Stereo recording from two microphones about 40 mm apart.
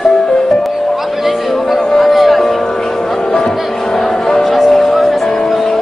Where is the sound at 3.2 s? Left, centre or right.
Centre.